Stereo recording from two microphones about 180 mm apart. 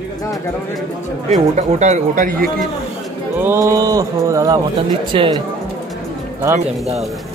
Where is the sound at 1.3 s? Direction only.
40° right (ahead or behind).